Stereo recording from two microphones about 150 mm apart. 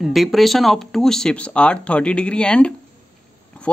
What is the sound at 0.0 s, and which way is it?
A man's voice, centre (ahead or behind).